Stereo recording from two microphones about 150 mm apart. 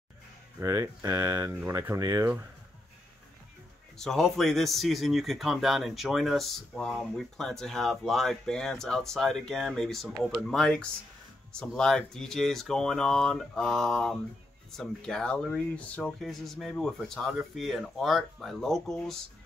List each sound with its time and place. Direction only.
0.6 s speech: 20° right (ahead or behind)
4.0 s speech: 5° left (ahead or behind)